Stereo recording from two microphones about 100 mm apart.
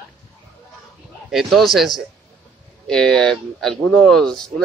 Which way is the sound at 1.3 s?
Centre (ahead or behind).